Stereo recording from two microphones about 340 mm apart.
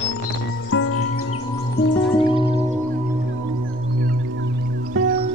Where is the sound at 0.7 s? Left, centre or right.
Left.